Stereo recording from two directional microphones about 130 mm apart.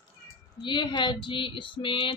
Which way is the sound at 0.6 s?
35° left (ahead or behind).